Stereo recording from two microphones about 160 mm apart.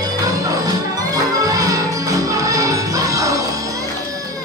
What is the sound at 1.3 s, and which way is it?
Music, 20° right (ahead or behind).